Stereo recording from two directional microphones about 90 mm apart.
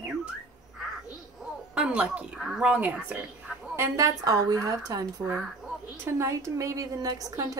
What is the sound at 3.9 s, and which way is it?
A woman's voice, 40° right (ahead or behind).